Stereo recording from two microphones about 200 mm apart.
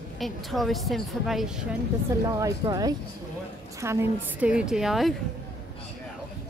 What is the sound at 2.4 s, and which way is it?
A woman's voice, 15° right (ahead or behind).